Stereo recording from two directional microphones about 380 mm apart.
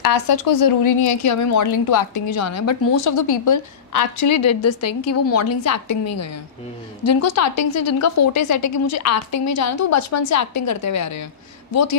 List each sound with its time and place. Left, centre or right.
0.0 s a woman's voice: left
1.2 s a woman's voice: left
1.9 s a woman's voice: left
2.3 s a woman's voice: left